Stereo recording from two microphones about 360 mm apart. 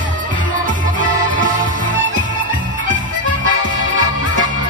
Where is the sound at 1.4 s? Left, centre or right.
Right.